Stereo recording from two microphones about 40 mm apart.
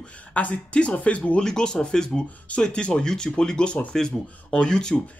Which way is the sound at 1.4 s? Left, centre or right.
Centre.